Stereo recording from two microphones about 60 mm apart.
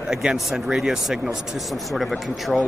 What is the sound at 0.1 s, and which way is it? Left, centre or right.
Speech, centre.